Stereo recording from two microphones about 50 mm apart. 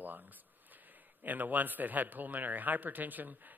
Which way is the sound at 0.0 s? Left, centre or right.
Right.